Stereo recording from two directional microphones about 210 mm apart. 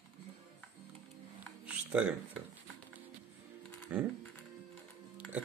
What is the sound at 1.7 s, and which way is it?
Music, 5° right (ahead or behind).